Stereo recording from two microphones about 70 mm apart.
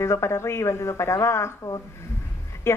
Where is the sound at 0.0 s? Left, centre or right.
Left.